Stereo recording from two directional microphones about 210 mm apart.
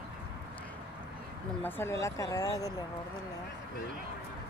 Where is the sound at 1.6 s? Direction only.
10° left (ahead or behind).